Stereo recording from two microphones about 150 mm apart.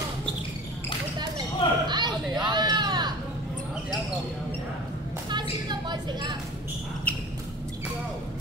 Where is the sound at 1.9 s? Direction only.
30° right (ahead or behind).